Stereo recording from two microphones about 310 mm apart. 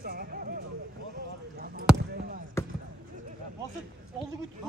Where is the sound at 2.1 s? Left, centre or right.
Right.